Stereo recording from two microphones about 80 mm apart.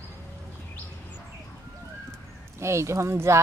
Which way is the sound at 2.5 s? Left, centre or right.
Right.